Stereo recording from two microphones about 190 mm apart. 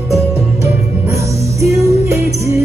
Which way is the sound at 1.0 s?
15° right (ahead or behind).